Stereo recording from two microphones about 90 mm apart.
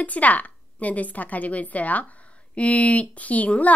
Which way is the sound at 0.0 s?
15° left (ahead or behind).